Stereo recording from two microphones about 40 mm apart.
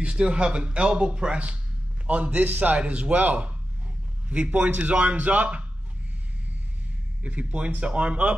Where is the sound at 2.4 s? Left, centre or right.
Right.